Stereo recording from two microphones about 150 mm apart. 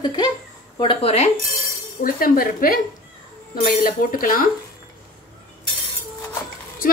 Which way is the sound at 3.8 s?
70° left (ahead or behind).